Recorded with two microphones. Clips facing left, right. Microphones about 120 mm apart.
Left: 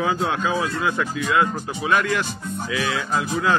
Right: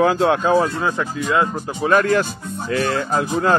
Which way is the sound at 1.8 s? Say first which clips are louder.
Right 6 dB; 40° right (ahead or behind).